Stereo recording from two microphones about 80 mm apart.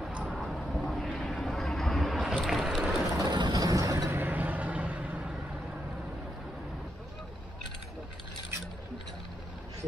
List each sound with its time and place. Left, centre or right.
0.2 s vehicle: centre
3.2 s vehicle: right
4.2 s vehicle: right